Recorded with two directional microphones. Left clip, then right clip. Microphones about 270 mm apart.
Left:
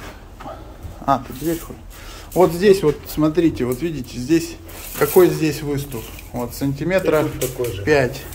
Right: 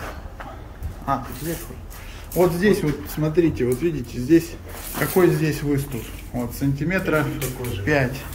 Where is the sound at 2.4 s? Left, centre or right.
Centre.